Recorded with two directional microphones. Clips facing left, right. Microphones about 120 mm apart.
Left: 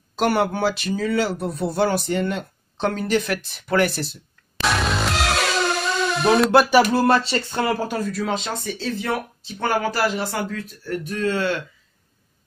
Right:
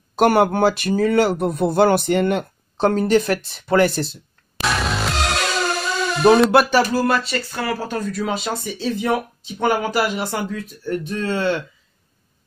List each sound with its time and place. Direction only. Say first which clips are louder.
0.1 s speech: right 5 dB; 50° right (ahead or behind)
2.8 s speech: right 5 dB; 35° right (ahead or behind)
4.6 s music: even; centre (ahead or behind)
6.9 s speech: left 1 dB; 25° left (ahead or behind)
8.0 s speech: right 1 dB; centre (ahead or behind); by 11.6 s 25° right (ahead or behind)